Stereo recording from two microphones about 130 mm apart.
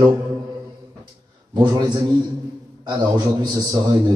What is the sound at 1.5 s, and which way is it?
A man's voice, 30° right (ahead or behind).